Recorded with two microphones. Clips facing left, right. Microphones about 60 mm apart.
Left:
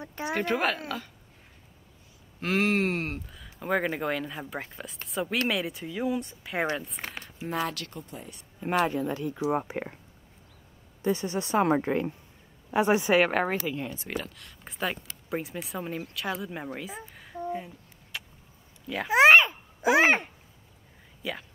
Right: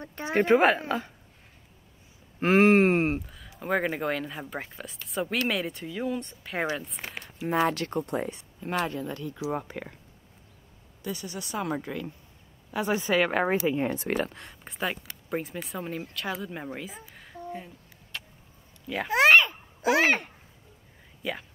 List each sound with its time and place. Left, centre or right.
0.0 s a sound: centre
0.5 s speech: right
2.4 s speech: right
3.5 s speech: centre
7.4 s speech: right
8.0 s speech: right
8.5 s speech: left
11.0 s a woman's voice: left; by 13.3 s centre
13.9 s speech: right
14.3 s speech: right
14.6 s speech: centre
18.1 s vehicle: centre
19.0 s a child's voice: centre
21.2 s speech: centre